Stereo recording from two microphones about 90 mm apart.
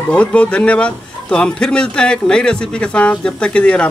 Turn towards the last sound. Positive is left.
turn(degrees=10)  # may be behind; listen again after turning